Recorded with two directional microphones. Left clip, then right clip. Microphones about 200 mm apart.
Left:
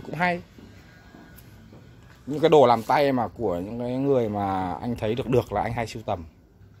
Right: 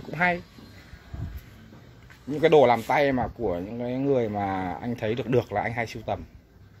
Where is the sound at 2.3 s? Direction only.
15° left (ahead or behind).